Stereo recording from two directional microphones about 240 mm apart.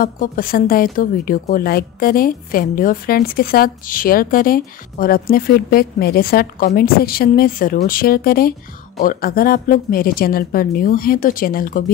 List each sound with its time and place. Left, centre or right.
0.0 s speech: left